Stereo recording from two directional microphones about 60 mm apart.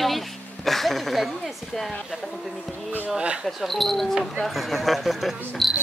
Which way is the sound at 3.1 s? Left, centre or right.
Centre.